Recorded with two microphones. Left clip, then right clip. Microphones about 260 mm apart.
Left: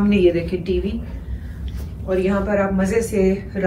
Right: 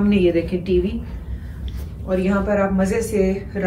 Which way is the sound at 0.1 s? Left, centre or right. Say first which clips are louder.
Left 2 dB; right.